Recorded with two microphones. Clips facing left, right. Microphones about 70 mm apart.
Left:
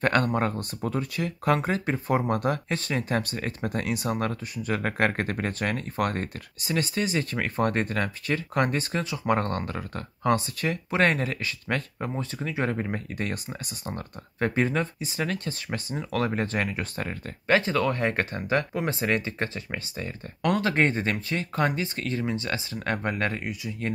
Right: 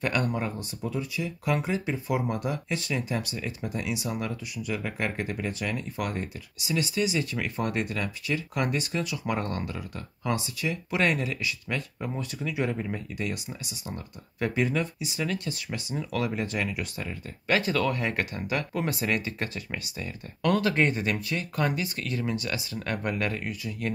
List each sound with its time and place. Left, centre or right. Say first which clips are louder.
0.3 s speech: left 5 dB; left
17.5 s speech: left 2 dB; left